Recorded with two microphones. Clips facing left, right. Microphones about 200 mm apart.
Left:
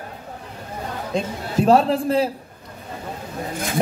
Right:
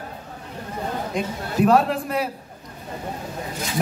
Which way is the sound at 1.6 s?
30° left (ahead or behind).